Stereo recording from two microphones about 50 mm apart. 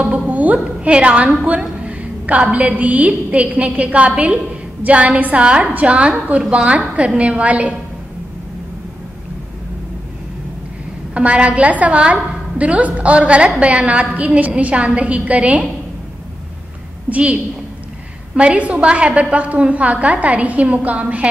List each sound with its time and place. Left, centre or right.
0.3 s a sound: right
0.9 s a woman's voice: right
11.1 s a woman's voice: right
17.1 s a woman's voice: right